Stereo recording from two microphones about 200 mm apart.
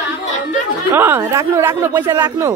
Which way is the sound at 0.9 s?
10° right (ahead or behind).